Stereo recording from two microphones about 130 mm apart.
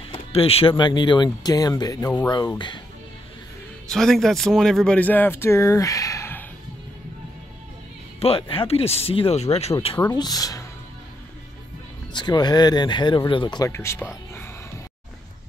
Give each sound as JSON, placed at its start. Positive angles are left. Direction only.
{"t": 0.1, "sound": "a sound", "side_deg": 50}
{"t": 0.7, "sound": "speech", "side_deg": 35}
{"t": 3.9, "sound": "speech", "side_deg": 5}
{"t": 8.2, "sound": "speech", "side_deg": 45}
{"t": 10.0, "sound": "speech", "side_deg": 30}
{"t": 12.1, "sound": "speech", "side_deg": 35}
{"t": 13.7, "sound": "speech", "side_deg": 20}